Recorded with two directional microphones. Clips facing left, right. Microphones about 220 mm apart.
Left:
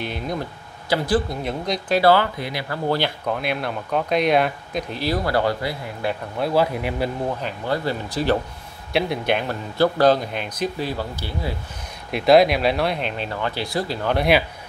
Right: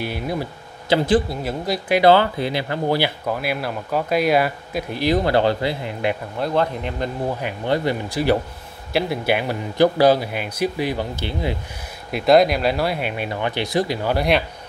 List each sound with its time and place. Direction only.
0.0 s speech: 10° right (ahead or behind)
0.8 s speech: 25° right (ahead or behind)
1.3 s speech: 5° right (ahead or behind)
2.0 s speech: 25° right (ahead or behind)
2.9 s speech: 10° right (ahead or behind)
5.0 s speech: 20° right (ahead or behind)
6.3 s speech: 5° left (ahead or behind)
7.2 s speech: 10° right (ahead or behind)
12.1 s speech: centre (ahead or behind)
14.1 s speech: centre (ahead or behind)